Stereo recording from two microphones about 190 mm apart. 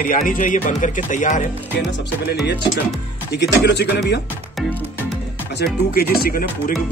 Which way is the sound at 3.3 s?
65° left (ahead or behind).